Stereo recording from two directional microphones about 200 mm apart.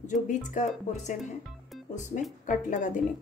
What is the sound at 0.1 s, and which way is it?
Speech, 40° left (ahead or behind).